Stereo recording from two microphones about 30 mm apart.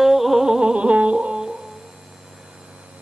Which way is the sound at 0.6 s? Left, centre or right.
Right.